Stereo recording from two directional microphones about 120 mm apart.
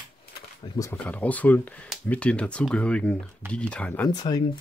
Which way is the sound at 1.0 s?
10° left (ahead or behind).